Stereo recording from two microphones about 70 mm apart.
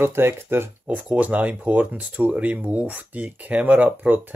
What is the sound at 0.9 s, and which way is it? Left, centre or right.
Speech, right.